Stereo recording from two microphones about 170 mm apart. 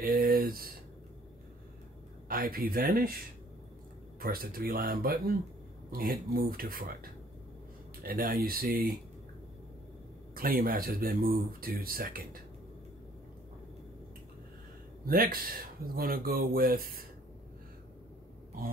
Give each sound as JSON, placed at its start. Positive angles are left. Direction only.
{"t": 0.0, "sound": "a sound", "side_deg": -60}
{"t": 2.2, "sound": "speech", "side_deg": -60}
{"t": 4.2, "sound": "speech", "side_deg": -60}
{"t": 8.0, "sound": "speech", "side_deg": -55}
{"t": 10.3, "sound": "speech", "side_deg": -60}
{"t": 15.0, "sound": "speech", "side_deg": -60}